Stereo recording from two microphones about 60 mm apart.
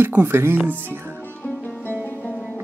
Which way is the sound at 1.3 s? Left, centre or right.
Left.